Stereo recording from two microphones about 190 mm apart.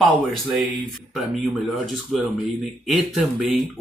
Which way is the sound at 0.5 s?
Centre (ahead or behind).